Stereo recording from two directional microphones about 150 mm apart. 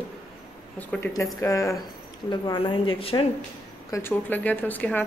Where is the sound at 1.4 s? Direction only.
20° left (ahead or behind).